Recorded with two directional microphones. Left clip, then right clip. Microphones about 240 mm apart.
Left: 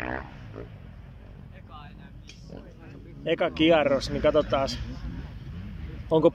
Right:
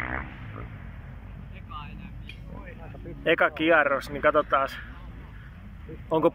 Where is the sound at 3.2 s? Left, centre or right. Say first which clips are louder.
Right 1 dB; centre.